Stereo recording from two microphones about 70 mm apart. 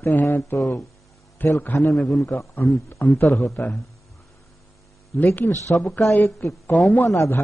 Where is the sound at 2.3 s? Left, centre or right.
Left.